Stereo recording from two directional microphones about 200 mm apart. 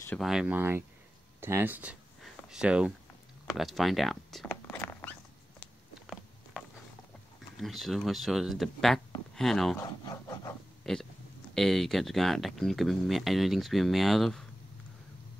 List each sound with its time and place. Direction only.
0.2 s speech: 5° right (ahead or behind)
4.5 s dog: 10° left (ahead or behind)
5.6 s a sound: centre (ahead or behind)
7.5 s speech: centre (ahead or behind)
9.8 s speech: 15° left (ahead or behind)
10.9 s speech: 5° left (ahead or behind)